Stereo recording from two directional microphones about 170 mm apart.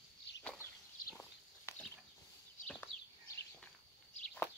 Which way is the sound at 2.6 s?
5° left (ahead or behind).